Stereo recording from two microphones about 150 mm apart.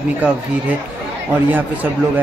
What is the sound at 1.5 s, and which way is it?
Speech, 10° right (ahead or behind).